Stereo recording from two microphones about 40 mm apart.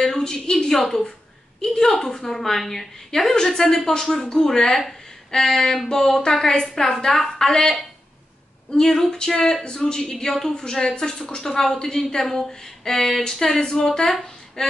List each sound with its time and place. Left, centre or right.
0.0 s a woman's voice: centre